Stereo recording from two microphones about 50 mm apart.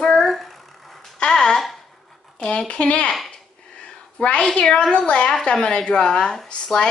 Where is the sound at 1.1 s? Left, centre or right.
Centre.